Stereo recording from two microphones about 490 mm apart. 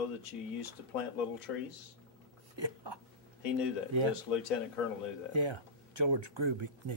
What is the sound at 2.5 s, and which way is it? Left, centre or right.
Speech, right.